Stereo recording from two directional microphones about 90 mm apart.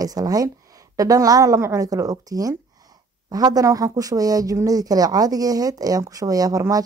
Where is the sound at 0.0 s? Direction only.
45° right (ahead or behind).